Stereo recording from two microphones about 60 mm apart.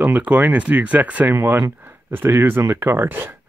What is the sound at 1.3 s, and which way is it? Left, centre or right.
Speech, right.